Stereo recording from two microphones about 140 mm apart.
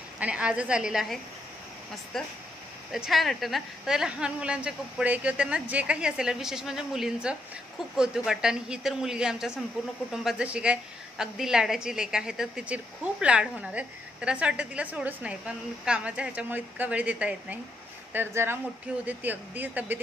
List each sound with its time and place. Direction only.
0.2 s a woman's voice: 5° right (ahead or behind)